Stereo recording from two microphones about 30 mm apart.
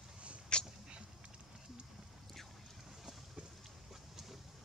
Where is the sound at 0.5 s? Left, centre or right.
Left.